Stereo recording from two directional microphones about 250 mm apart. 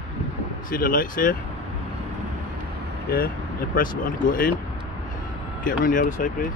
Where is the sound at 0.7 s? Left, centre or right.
Left.